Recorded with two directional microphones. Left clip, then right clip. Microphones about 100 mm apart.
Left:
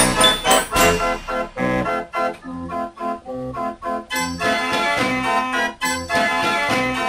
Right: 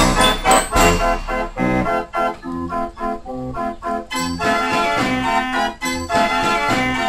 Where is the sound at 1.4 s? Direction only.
5° left (ahead or behind).